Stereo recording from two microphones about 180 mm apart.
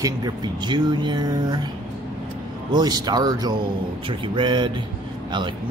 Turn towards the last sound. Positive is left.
turn(degrees=-25)  # may be behind; listen again after turning